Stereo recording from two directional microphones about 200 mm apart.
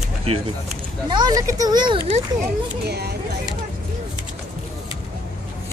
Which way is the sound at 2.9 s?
55° right (ahead or behind).